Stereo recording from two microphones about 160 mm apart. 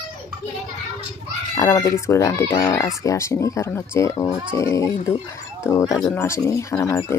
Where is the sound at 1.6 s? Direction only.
20° left (ahead or behind).